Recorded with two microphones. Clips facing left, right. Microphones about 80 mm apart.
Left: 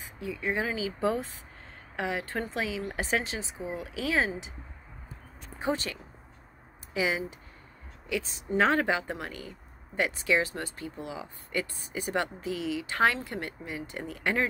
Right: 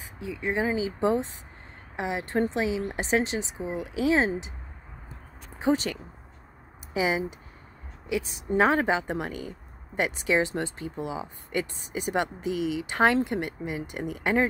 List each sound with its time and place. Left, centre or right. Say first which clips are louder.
0.4 s speech: right 4 dB; right
6.9 s speech: right 3 dB; right
8.5 s speech: right 2 dB; right